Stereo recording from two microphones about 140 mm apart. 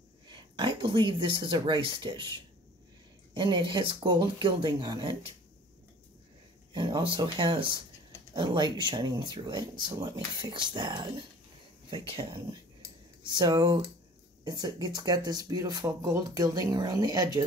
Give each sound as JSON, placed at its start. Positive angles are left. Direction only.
{"t": 0.3, "sound": "speech", "side_deg": -35}
{"t": 3.3, "sound": "speech", "side_deg": -35}
{"t": 6.7, "sound": "speech", "side_deg": -30}